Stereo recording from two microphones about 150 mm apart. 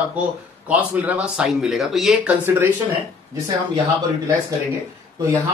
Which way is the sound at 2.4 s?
15° right (ahead or behind).